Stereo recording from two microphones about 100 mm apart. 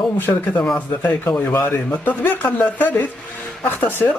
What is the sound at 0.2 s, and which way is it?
Speech, 20° left (ahead or behind).